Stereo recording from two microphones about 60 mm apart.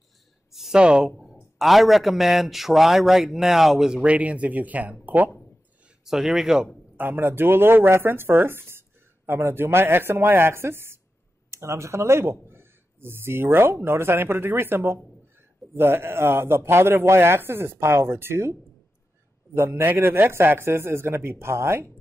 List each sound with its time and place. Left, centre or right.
0.5 s a sound: centre
1.2 s a man's voice: centre; by 5.3 s right
6.0 s speech: centre
7.0 s speech: right
19.7 s speech: right